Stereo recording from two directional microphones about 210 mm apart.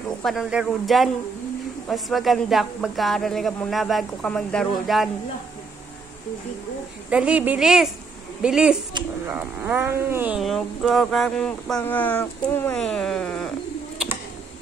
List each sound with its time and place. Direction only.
0.2 s speech: centre (ahead or behind)
7.1 s speech: 5° right (ahead or behind)